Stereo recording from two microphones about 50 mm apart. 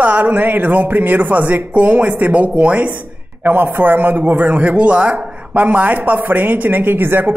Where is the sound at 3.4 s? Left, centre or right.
Right.